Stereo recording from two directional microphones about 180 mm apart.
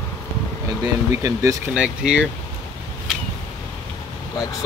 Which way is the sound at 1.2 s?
20° right (ahead or behind).